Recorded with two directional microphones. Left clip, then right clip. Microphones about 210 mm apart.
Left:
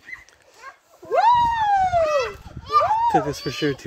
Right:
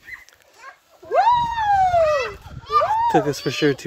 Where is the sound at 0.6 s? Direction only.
5° left (ahead or behind).